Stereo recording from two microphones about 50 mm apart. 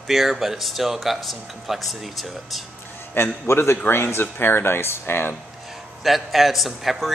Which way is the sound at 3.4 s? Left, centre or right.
Left.